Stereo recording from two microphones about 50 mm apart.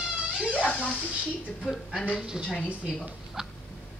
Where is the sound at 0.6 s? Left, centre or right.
Left.